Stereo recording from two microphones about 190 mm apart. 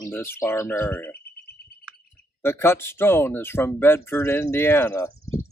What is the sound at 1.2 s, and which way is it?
Frog, 55° left (ahead or behind).